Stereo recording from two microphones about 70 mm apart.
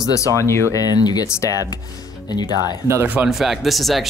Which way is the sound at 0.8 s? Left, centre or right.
Left.